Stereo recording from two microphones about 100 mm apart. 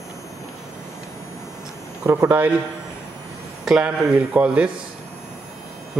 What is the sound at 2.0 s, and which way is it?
Speech, 30° right (ahead or behind).